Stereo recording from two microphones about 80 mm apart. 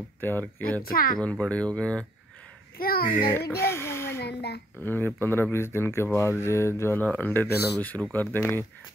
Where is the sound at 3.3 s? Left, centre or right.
Left.